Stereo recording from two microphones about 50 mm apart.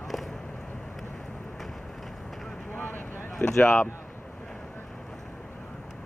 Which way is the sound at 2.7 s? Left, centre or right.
Left.